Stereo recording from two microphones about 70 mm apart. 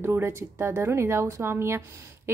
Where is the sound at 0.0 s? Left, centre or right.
Right.